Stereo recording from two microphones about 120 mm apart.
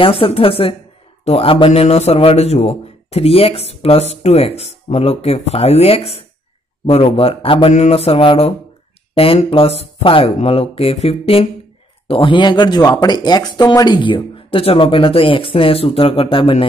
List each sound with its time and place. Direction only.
0.0 s speech: 50° left (ahead or behind)
1.7 s a man's voice: 60° left (ahead or behind)